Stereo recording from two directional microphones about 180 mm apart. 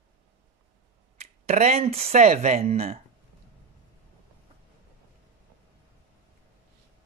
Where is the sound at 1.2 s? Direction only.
40° right (ahead or behind).